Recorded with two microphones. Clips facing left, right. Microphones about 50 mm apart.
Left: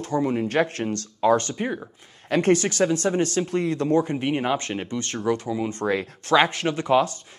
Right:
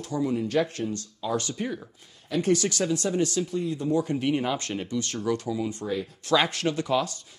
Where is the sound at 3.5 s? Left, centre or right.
Left.